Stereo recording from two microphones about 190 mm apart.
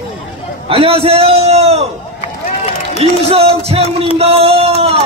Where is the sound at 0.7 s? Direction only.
30° right (ahead or behind).